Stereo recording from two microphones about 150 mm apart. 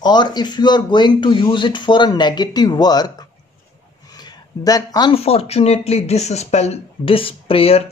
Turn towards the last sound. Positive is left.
turn(degrees=40)  # may be behind; listen again after turning